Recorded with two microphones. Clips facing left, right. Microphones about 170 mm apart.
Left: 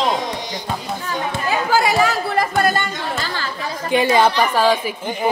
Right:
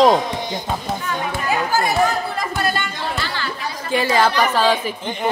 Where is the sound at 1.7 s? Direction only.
90° left; by 2.8 s 50° left (ahead or behind).